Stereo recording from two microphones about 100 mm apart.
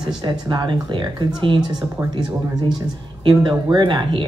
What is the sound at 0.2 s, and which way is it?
Speech, 45° right (ahead or behind).